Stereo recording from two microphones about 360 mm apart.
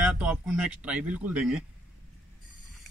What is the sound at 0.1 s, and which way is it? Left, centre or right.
Speech, centre.